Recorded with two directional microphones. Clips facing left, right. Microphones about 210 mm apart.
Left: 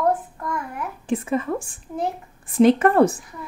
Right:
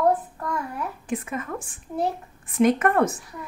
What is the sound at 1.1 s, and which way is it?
A woman's voice, 30° left (ahead or behind).